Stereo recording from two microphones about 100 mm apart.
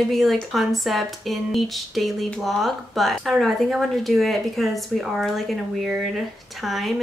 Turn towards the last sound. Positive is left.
turn(degrees=0)  # may be behind; listen again after turning